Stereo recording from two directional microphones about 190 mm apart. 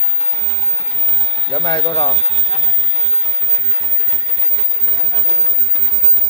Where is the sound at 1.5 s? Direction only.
25° left (ahead or behind).